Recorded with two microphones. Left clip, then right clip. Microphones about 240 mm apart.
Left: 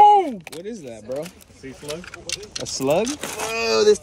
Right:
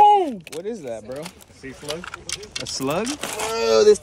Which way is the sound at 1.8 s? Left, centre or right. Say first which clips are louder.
Right 1 dB; centre.